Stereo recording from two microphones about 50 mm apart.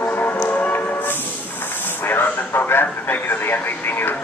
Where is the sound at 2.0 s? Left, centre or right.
Left.